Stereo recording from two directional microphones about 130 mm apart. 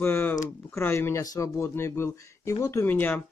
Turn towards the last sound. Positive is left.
turn(degrees=15)  # may be behind; listen again after turning